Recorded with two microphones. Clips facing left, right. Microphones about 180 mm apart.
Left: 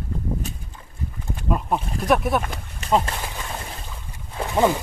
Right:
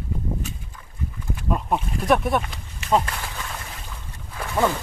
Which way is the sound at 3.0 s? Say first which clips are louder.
Left 1 dB; 25° left (ahead or behind).